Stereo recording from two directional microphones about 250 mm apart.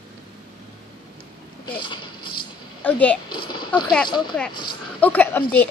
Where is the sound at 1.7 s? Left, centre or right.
Centre.